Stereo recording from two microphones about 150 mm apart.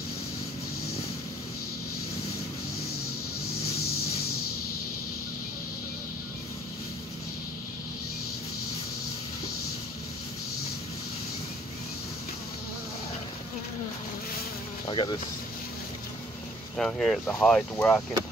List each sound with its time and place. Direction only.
14.9 s speech: 35° left (ahead or behind)
16.7 s speech: 5° left (ahead or behind)